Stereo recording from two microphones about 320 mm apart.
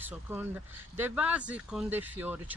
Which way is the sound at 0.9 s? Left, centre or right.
Centre.